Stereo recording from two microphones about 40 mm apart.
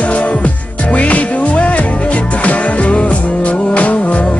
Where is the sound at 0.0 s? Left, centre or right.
Left.